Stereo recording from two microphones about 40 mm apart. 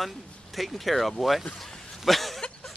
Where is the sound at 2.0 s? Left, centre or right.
Centre.